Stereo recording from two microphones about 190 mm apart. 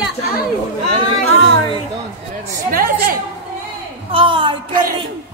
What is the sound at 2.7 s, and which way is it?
Speech, 50° right (ahead or behind).